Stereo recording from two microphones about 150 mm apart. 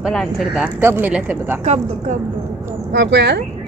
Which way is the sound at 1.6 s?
50° right (ahead or behind).